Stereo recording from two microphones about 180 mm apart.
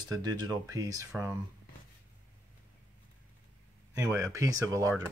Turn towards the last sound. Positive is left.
turn(degrees=-20)  # may be behind; listen again after turning